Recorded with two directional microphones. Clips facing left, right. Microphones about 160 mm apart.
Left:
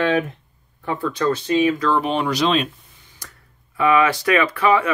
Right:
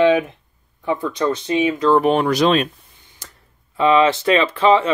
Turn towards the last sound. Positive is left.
turn(degrees=-25)  # may be behind; listen again after turning